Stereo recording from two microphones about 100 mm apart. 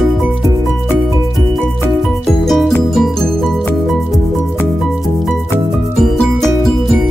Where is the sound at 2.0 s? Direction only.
Centre (ahead or behind).